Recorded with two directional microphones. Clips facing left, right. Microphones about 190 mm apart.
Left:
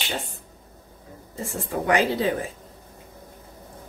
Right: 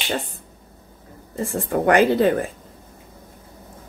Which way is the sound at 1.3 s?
55° right (ahead or behind).